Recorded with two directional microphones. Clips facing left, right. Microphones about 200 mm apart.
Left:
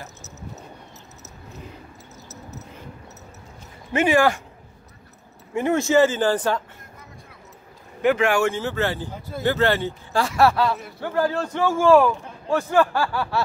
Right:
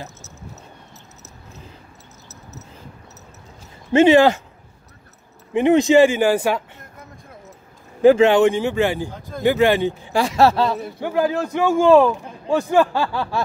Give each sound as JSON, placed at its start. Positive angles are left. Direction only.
{"t": 3.9, "sound": "speech", "side_deg": -25}
{"t": 5.5, "sound": "speech", "side_deg": -15}
{"t": 8.0, "sound": "speech", "side_deg": -25}